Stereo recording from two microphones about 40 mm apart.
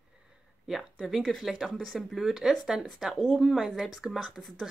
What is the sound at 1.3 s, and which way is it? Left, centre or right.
Speech, centre.